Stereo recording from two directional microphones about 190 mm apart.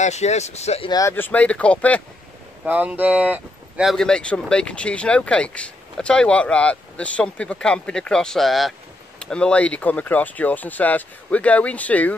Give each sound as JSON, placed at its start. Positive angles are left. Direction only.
{"t": 0.0, "sound": "speech", "side_deg": 35}
{"t": 0.8, "sound": "speech", "side_deg": 15}
{"t": 2.6, "sound": "speech", "side_deg": -10}